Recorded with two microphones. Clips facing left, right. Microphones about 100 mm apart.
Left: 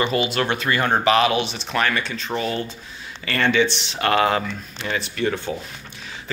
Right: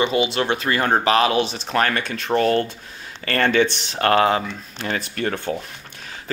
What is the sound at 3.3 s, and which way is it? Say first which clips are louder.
Speech: right 1 dB; 45° right (ahead or behind).